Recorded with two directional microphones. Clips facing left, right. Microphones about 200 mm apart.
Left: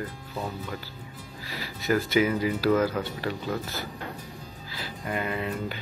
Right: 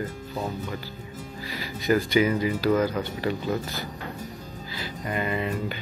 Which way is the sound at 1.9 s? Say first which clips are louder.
Right 2 dB; centre (ahead or behind).